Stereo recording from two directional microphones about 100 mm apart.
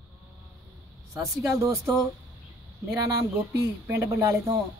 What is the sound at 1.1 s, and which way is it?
Speech, 30° right (ahead or behind).